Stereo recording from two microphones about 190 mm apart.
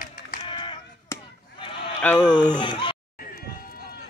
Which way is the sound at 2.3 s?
25° left (ahead or behind).